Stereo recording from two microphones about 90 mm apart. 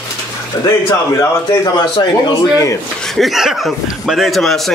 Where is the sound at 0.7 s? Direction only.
35° left (ahead or behind).